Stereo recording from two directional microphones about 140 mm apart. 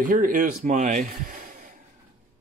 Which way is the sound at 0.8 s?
65° right (ahead or behind).